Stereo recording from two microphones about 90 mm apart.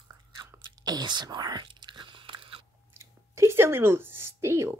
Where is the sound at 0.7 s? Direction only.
50° right (ahead or behind); by 2.6 s 75° right (ahead or behind).